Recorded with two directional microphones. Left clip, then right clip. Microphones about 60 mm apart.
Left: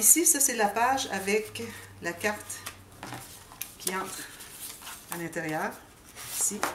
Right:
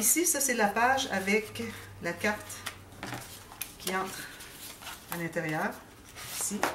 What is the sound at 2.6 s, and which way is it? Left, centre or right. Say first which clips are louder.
Dishes: right 2 dB; centre.